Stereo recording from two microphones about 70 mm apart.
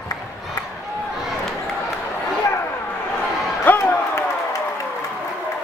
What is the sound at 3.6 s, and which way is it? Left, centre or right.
Slam, left.